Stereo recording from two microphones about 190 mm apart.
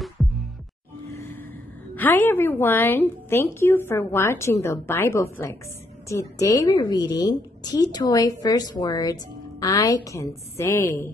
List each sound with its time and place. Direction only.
1.0 s music: 15° left (ahead or behind)
2.0 s a woman's voice: 10° left (ahead or behind)